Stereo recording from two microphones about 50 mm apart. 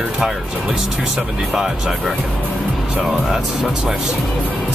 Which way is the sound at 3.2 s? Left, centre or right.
Centre.